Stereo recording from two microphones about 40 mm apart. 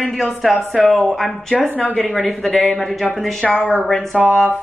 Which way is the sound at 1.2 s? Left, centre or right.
Centre.